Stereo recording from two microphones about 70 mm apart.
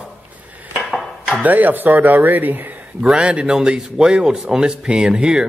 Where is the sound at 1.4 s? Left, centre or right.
Right.